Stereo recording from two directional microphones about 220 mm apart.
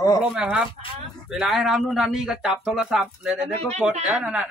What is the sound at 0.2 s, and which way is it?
Speech, 5° right (ahead or behind).